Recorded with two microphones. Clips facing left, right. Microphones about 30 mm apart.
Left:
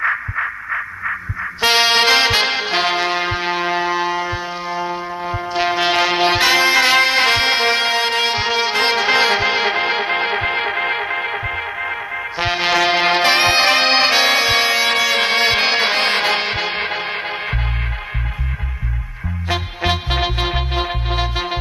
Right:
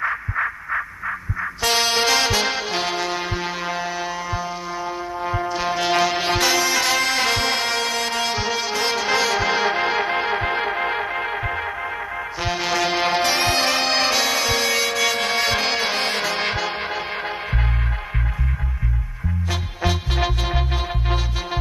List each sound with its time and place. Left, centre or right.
0.4 s a sound: centre
1.6 s music: left
12.4 s brass instrument: left
15.2 s music: left
19.5 s music: left